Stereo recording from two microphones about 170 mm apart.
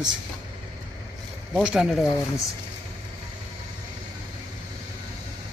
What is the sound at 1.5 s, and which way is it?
Speech, 5° right (ahead or behind).